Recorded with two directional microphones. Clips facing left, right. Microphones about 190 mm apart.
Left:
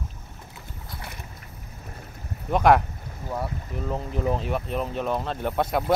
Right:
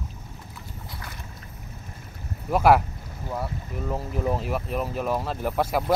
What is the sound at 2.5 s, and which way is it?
Speech, 5° right (ahead or behind).